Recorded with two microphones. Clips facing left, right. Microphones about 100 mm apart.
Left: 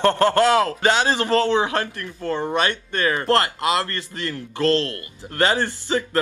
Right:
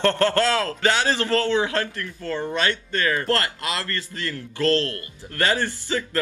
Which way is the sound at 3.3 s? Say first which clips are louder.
Left 5 dB; 20° left (ahead or behind).